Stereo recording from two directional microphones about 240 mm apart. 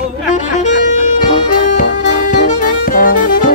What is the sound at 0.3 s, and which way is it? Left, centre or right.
Music, left.